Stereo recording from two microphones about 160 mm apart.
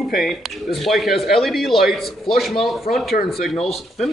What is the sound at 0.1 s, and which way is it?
Speech, centre (ahead or behind).